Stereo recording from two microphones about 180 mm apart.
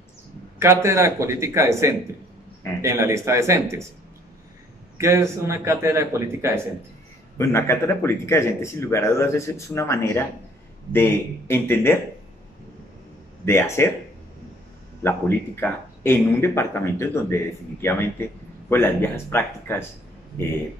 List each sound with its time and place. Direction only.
0.6 s a man's voice: 15° right (ahead or behind)
4.9 s a man's voice: 15° right (ahead or behind)
7.3 s a man's voice: 15° left (ahead or behind)
13.5 s a man's voice: 15° left (ahead or behind)
15.0 s a man's voice: 10° left (ahead or behind)
18.7 s a man's voice: 10° left (ahead or behind)